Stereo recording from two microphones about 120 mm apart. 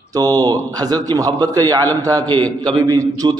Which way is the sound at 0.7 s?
35° right (ahead or behind).